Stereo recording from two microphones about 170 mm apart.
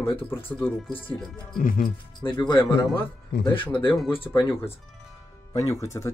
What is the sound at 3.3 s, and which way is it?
Speech, 85° left.